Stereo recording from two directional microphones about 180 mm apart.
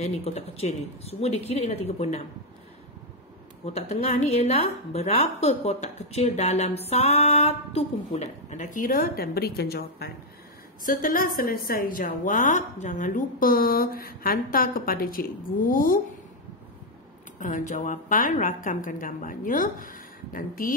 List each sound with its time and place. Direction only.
0.0 s a woman's voice: 35° left (ahead or behind)
3.6 s a woman's voice: 35° left (ahead or behind); by 10.1 s 60° left (ahead or behind)
10.8 s a woman's voice: 50° left (ahead or behind)
17.4 s a woman's voice: 50° left (ahead or behind)